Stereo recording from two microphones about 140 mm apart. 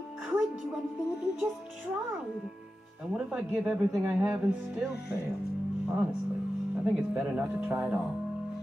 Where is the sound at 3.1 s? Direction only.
5° right (ahead or behind).